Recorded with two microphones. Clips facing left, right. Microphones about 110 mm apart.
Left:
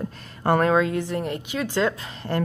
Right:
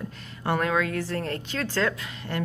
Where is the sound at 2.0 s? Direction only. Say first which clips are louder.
Left 5 dB; 35° left (ahead or behind).